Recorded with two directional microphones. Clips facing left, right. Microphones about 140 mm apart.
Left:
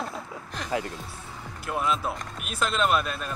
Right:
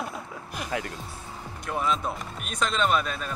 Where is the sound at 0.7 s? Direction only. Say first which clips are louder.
Left 3 dB; 30° left (ahead or behind).